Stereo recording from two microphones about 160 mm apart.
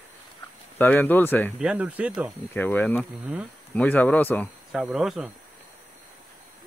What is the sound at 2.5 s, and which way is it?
A man's voice, 10° left (ahead or behind).